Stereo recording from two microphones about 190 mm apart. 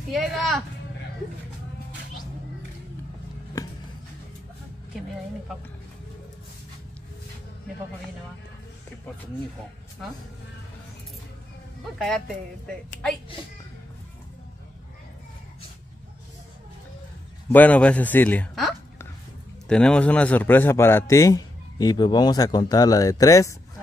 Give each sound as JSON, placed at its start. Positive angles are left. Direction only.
{"t": 0.1, "sound": "speech", "side_deg": 0}
{"t": 17.5, "sound": "a man's voice", "side_deg": 10}